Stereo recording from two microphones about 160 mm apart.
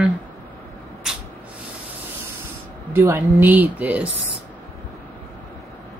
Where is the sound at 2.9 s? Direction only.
15° right (ahead or behind).